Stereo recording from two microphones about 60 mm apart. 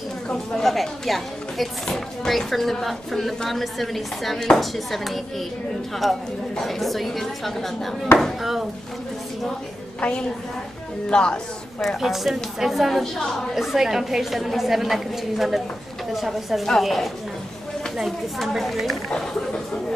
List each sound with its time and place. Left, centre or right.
0.3 s speech: centre
9.9 s a woman's voice: centre
12.0 s speech: centre
19.0 s speech: centre